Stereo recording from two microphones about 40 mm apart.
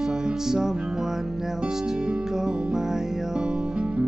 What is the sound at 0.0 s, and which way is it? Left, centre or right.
Music, centre.